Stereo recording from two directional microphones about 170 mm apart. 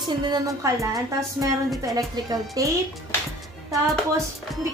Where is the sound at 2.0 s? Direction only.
20° right (ahead or behind).